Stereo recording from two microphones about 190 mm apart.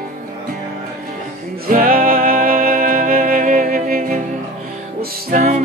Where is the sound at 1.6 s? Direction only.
50° right (ahead or behind).